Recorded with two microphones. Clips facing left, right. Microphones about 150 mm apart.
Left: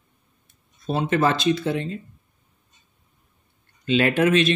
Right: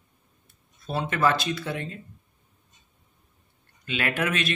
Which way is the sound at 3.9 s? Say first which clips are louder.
Left 9 dB; 25° left (ahead or behind).